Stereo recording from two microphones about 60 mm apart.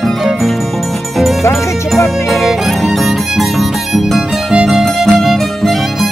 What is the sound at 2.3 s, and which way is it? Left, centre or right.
Music, centre.